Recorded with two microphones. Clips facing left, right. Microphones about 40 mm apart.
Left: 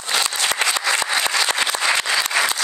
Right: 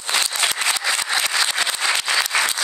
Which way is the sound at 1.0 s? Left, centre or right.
Centre.